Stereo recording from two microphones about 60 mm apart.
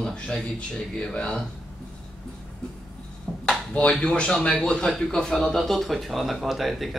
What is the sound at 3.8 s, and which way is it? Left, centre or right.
Speech, centre.